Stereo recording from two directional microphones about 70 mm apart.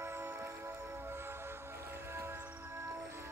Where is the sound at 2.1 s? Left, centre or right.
Right.